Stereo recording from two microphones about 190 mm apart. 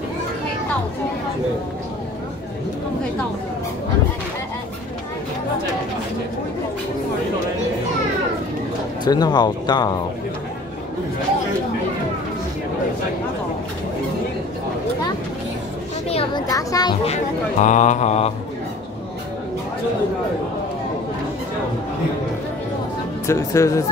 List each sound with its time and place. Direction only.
9.0 s speech: 20° left (ahead or behind)
16.1 s a sound: 30° left (ahead or behind)
16.4 s speech: 20° left (ahead or behind)
17.0 s speech: 35° left (ahead or behind)
23.2 s speech: 15° left (ahead or behind)